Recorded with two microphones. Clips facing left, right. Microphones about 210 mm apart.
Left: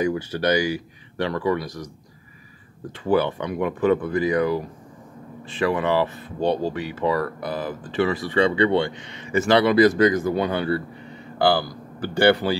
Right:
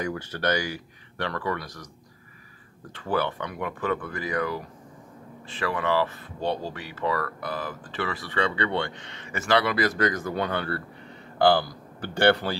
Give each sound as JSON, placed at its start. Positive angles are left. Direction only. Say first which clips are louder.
{"t": 0.0, "sound": "speech", "louder": "left 6 dB", "side_deg": 10}
{"t": 2.9, "sound": "speech", "louder": "left 7 dB", "side_deg": 15}